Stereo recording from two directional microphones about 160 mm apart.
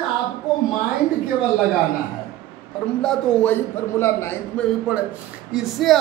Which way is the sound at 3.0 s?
5° left (ahead or behind).